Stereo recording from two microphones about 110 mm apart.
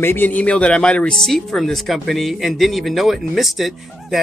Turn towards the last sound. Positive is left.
turn(degrees=0)  # may be behind; listen again after turning